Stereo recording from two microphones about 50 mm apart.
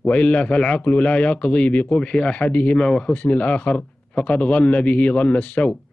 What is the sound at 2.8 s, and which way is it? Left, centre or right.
Speech, centre.